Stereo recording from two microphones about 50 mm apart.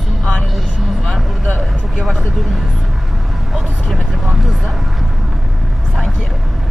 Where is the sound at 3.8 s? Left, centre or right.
Centre.